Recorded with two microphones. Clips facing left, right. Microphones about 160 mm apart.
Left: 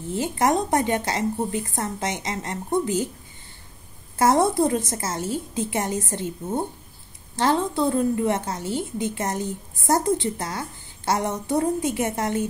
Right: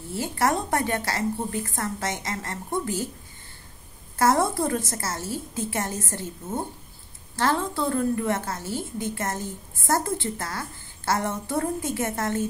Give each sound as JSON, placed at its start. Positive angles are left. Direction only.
{"t": 0.1, "sound": "a woman's voice", "side_deg": 20}
{"t": 4.2, "sound": "a woman's voice", "side_deg": 20}